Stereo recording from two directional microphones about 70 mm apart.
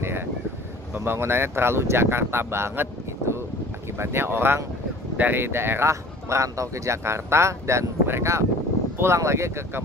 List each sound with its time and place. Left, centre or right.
0.0 s vehicle: right
0.9 s speech: right
5.9 s speech: right